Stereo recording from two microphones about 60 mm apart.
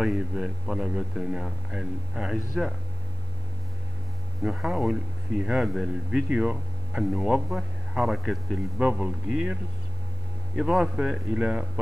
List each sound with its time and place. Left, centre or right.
0.0 s a man's voice: centre
4.4 s a man's voice: centre
6.2 s a man's voice: right; by 8.5 s centre
8.7 s a man's voice: centre
11.0 s speech: centre